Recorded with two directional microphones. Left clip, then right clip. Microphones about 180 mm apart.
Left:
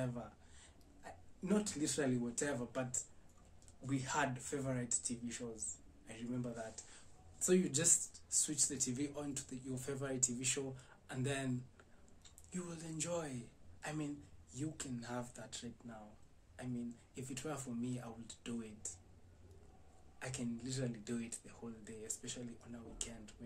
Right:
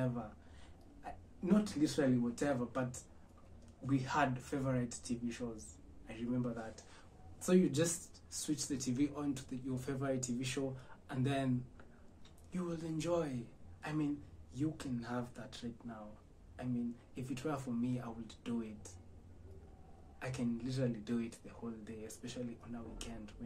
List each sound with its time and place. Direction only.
1.0 s a sound: 15° left (ahead or behind)
1.4 s speech: 15° left (ahead or behind)
12.5 s speech: 15° left (ahead or behind)
20.2 s speech: 15° left (ahead or behind)